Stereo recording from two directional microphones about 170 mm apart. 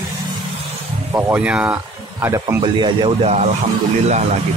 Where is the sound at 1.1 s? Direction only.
10° right (ahead or behind).